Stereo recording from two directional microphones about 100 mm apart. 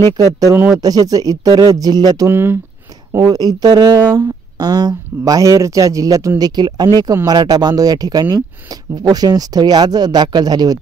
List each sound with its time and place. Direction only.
0.7 s speech: 40° right (ahead or behind)
2.2 s speech: 20° right (ahead or behind)
3.1 s speech: 35° right (ahead or behind)